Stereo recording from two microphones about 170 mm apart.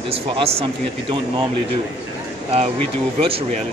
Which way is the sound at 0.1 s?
35° right (ahead or behind).